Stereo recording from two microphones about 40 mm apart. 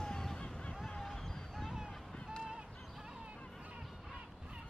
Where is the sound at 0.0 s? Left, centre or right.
Centre.